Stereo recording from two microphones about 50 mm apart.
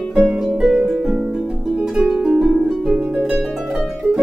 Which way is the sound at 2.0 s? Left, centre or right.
Centre.